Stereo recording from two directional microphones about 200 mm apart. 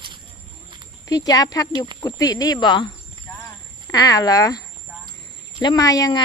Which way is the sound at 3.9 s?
15° left (ahead or behind).